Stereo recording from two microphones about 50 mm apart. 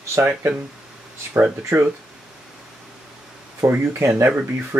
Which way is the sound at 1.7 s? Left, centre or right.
Right.